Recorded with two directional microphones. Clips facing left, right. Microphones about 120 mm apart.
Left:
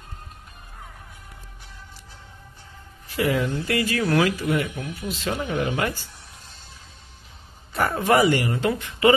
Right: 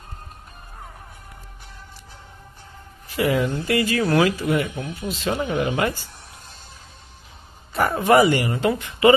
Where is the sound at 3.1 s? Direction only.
15° right (ahead or behind).